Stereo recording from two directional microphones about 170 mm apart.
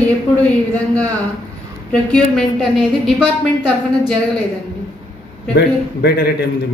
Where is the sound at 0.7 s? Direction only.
10° left (ahead or behind).